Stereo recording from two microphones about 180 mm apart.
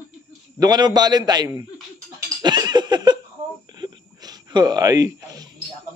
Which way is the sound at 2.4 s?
25° right (ahead or behind).